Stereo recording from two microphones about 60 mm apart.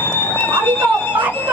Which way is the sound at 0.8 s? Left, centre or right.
Right.